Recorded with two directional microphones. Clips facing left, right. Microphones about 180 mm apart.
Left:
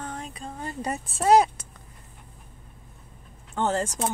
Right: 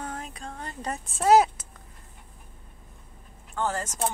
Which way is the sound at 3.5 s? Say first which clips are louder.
Left 4 dB; 25° left (ahead or behind).